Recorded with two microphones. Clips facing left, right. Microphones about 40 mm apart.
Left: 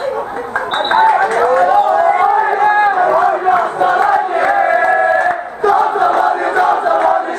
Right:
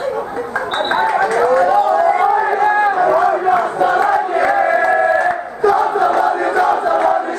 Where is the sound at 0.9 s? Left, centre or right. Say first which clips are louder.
Left 5 dB; left.